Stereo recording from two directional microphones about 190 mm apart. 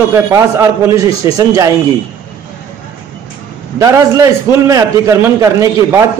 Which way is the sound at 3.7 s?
15° right (ahead or behind).